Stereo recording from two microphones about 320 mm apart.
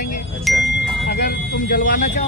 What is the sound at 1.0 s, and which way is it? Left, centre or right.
Speech, left.